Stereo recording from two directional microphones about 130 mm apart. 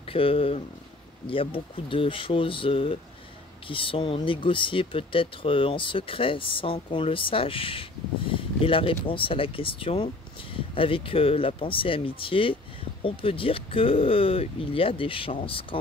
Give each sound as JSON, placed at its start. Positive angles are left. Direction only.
{"t": 0.0, "sound": "speech", "side_deg": 45}